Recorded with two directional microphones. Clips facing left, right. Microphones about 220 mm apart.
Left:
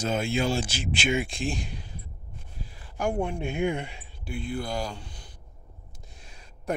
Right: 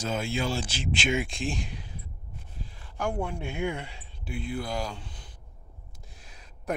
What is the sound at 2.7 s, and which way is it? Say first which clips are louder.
Speech: left 3 dB; 10° left (ahead or behind).